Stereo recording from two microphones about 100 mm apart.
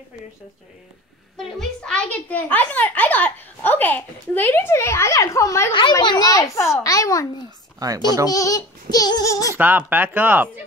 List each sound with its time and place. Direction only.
1.6 s a child's voice: 10° left (ahead or behind); by 5.7 s 30° left (ahead or behind)
5.7 s a child's voice: 55° left (ahead or behind)
6.0 s speech: 40° left (ahead or behind)
8.3 s speech: 35° left (ahead or behind)
9.6 s speech: 20° right (ahead or behind)